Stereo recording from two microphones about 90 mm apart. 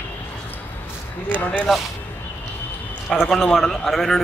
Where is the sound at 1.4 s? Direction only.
15° left (ahead or behind).